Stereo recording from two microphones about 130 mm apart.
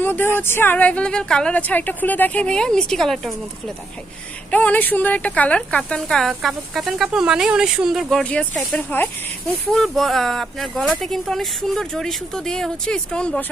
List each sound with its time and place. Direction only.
0.0 s speech: 15° left (ahead or behind)
4.5 s speech: 10° left (ahead or behind)
9.7 s speech: centre (ahead or behind)